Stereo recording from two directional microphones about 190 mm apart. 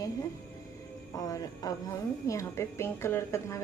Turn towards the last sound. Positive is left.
turn(degrees=15)  # may be behind; listen again after turning